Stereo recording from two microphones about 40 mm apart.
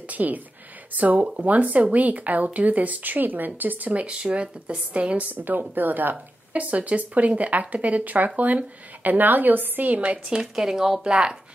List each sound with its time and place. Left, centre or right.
0.1 s a woman's voice: right
4.0 s speech: right
5.3 s a woman's voice: right
6.5 s a woman's voice: right
9.9 s speech: right
10.4 s speech: centre